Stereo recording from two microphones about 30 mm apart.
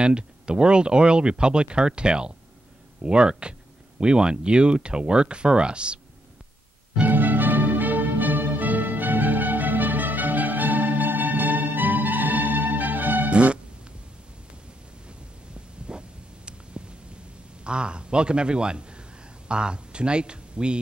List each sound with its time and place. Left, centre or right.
0.0 s speech: right
7.1 s music: right
13.3 s music: right
15.9 s a sound: right
17.6 s a man's voice: right